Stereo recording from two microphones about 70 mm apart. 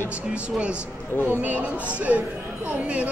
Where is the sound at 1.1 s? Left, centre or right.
Left.